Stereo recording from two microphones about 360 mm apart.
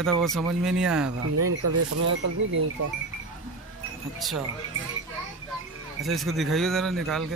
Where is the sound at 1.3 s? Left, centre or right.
Right.